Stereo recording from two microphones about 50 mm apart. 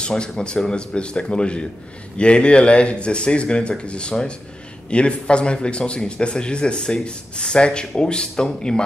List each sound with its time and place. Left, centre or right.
0.0 s a man's voice: centre